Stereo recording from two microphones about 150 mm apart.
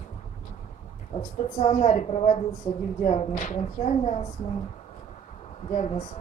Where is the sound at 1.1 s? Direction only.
50° left (ahead or behind).